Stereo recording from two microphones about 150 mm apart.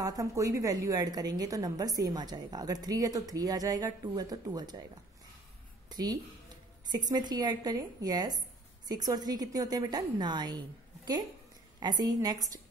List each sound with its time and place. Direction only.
0.0 s a woman's voice: 25° right (ahead or behind)
5.9 s a sound: 25° right (ahead or behind)
6.9 s a woman's voice: 30° right (ahead or behind)
11.8 s a woman's voice: 25° right (ahead or behind)